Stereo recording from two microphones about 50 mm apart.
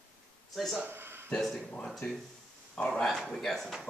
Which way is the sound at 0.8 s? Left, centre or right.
Right.